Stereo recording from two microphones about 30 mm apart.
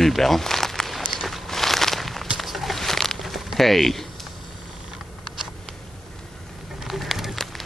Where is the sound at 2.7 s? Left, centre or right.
Centre.